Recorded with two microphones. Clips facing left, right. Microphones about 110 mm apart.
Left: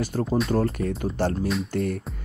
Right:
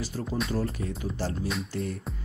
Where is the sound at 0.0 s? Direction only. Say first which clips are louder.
Left 7 dB; 55° left (ahead or behind).